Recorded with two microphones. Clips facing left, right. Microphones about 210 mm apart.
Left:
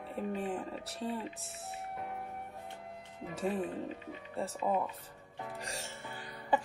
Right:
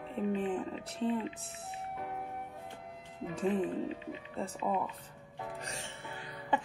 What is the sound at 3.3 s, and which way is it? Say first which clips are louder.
Speech: right 3 dB; centre (ahead or behind).